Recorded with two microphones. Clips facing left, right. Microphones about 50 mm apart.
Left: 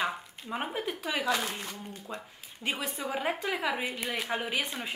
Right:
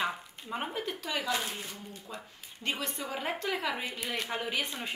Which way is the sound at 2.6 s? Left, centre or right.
Centre.